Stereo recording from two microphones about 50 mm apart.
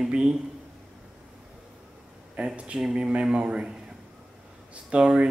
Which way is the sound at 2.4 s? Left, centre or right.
Right.